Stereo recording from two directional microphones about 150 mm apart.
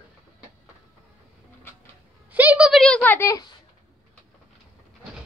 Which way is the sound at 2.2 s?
10° right (ahead or behind).